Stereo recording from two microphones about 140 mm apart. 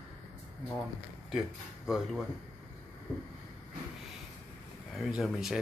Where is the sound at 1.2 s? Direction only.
5° right (ahead or behind).